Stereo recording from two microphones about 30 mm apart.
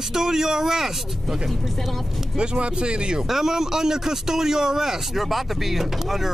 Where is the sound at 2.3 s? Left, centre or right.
Right.